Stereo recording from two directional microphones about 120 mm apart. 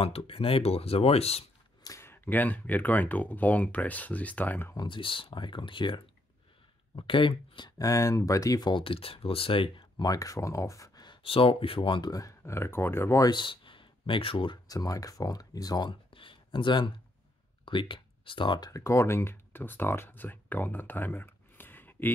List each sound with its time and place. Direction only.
0.0 s speech: 50° left (ahead or behind)
1.9 s speech: 20° left (ahead or behind)
4.7 s speech: 45° left (ahead or behind)
7.0 s speech: 45° left (ahead or behind)
7.8 s speech: 25° left (ahead or behind)
11.2 s speech: 50° left (ahead or behind); by 13.3 s 20° left (ahead or behind)
13.3 s speech: 45° left (ahead or behind)
14.7 s speech: 30° left (ahead or behind)
15.9 s a sound: 45° left (ahead or behind)
17.6 s speech: 45° left (ahead or behind)
18.7 s speech: 25° left (ahead or behind)